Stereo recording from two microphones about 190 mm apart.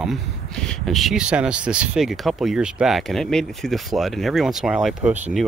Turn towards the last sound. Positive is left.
turn(degrees=-5)  # may be behind; listen again after turning